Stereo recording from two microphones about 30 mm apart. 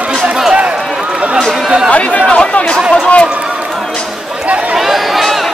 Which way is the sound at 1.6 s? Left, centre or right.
Right.